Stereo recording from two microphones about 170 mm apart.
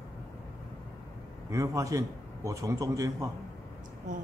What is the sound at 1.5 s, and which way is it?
A man's voice, 20° right (ahead or behind).